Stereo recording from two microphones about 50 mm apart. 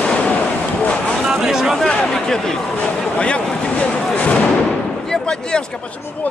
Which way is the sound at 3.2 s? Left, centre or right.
Left.